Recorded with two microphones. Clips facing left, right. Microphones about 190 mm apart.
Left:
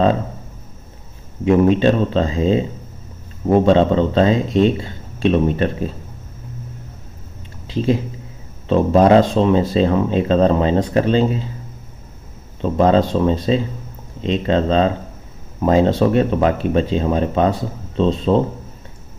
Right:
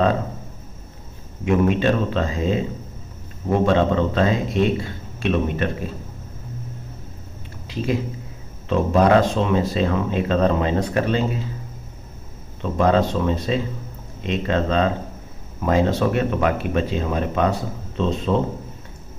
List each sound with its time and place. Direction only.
1.4 s speech: 30° left (ahead or behind)
7.6 s speech: 30° left (ahead or behind)
12.6 s speech: 30° left (ahead or behind)